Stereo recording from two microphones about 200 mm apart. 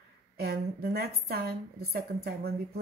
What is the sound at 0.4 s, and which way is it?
A woman's voice, 50° right (ahead or behind).